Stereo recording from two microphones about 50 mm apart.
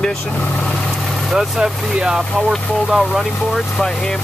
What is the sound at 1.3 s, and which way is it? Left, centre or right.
Speech, centre.